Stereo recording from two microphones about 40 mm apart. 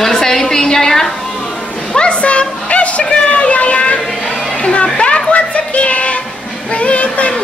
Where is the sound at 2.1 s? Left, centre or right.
Left.